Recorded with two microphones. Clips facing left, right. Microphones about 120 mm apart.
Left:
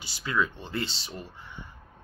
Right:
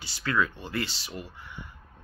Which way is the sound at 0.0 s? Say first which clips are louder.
Right 1 dB; 20° left (ahead or behind).